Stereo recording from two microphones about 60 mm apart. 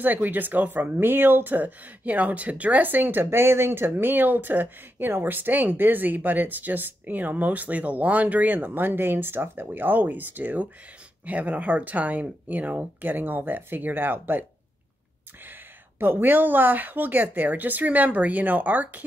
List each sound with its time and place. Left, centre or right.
0.0 s speech: right
16.0 s speech: right